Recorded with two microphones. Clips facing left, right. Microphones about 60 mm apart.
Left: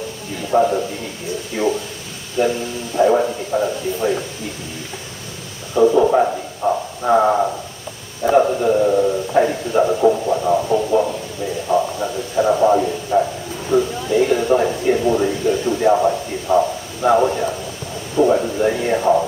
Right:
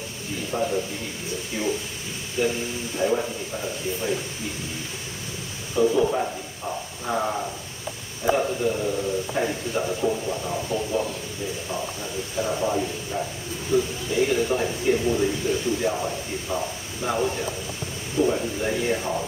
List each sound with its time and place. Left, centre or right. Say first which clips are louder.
0.5 s speech: left 11 dB; left
3.0 s a man's voice: left 10 dB; left
6.0 s a man's voice: left 9 dB; left